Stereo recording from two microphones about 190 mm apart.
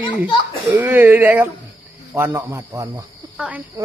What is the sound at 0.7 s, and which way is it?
Speech, 10° right (ahead or behind).